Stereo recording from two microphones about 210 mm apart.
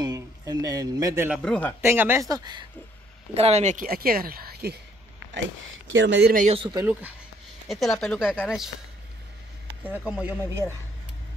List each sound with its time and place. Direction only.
0.0 s a man's voice: 15° right (ahead or behind)
1.4 s speech: 5° left (ahead or behind)
1.8 s speech: 10° right (ahead or behind)
3.3 s a woman's voice: 30° right (ahead or behind); by 4.7 s 50° right (ahead or behind)
5.9 s speech: 55° right (ahead or behind)
6.3 s a man's voice: 30° right (ahead or behind)
6.7 s speech: 10° right (ahead or behind)
7.6 s speech: centre (ahead or behind)
9.8 s speech: 10° right (ahead or behind)